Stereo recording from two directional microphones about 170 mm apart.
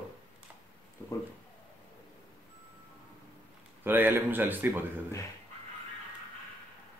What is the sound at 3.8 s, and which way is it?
Speech, 10° right (ahead or behind).